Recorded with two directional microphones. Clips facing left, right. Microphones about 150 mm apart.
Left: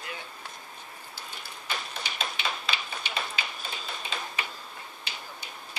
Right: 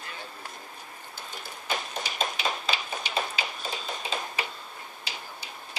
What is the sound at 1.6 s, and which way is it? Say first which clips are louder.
Tap: right 4 dB; 40° right (ahead or behind).